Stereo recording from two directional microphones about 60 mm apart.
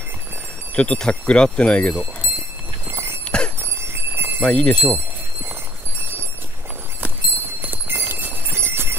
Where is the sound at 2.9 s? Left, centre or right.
Right.